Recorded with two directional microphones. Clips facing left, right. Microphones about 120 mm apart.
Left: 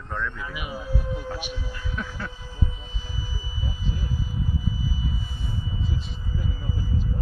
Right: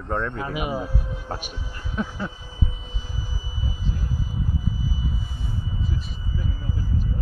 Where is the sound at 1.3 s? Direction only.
45° right (ahead or behind).